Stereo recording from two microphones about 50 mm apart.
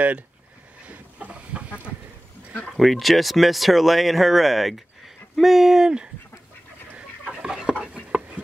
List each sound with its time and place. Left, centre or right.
0.8 s chicken: right
2.7 s speech: centre
7.4 s a sound: centre